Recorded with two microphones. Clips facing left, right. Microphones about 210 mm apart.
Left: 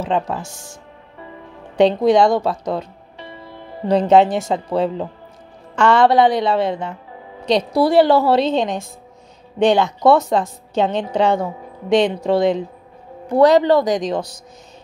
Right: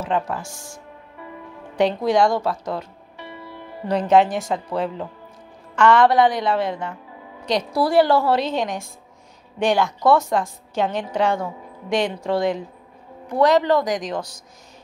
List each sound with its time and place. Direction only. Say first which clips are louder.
0.0 s a woman's voice: left 3 dB; 20° left (ahead or behind)
1.8 s a woman's voice: left 5 dB; 25° left (ahead or behind)